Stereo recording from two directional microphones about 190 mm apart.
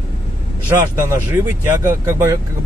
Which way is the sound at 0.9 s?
15° right (ahead or behind).